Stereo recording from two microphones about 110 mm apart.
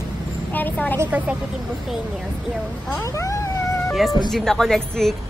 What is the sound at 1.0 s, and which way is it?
Speech, 15° right (ahead or behind).